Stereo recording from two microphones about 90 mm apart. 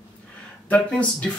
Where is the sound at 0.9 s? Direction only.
10° left (ahead or behind).